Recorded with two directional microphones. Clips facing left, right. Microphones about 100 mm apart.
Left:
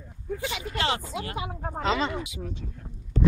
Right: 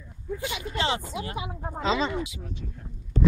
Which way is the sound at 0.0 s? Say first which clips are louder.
Left 1 dB; 50° left (ahead or behind).